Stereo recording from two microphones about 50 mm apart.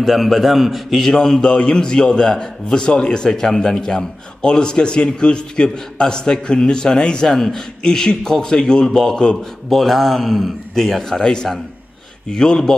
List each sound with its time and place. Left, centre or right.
0.0 s a man's voice: centre
1.5 s a man's voice: centre
9.7 s a man's voice: centre